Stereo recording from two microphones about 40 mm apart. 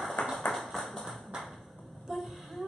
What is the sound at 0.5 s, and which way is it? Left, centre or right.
Tap, centre.